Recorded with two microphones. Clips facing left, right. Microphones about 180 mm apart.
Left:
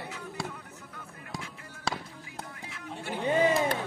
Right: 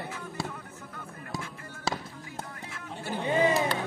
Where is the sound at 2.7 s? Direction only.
40° right (ahead or behind).